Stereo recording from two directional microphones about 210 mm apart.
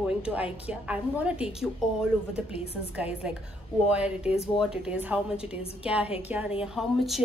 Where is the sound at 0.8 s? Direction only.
5° right (ahead or behind).